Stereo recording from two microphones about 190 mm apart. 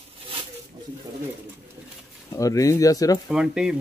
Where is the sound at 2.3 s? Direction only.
15° left (ahead or behind).